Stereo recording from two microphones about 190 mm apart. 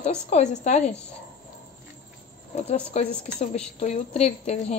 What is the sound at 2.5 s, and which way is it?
A woman's voice, 35° left (ahead or behind).